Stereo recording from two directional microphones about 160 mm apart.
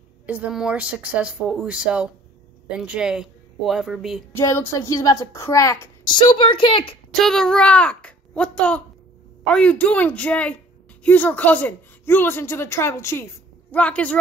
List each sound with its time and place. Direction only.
0.3 s a woman's voice: 5° right (ahead or behind)
4.4 s a woman's voice: 15° left (ahead or behind); by 7.0 s 35° left (ahead or behind)
7.2 s a woman's voice: 5° left (ahead or behind)